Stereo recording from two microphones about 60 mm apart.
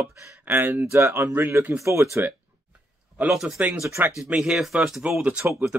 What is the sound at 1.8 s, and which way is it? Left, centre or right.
Speech, right.